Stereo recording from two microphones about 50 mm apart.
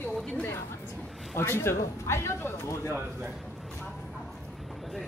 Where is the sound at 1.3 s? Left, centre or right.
Left.